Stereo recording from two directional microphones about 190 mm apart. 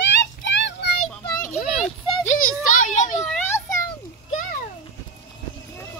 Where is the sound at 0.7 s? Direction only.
60° left (ahead or behind).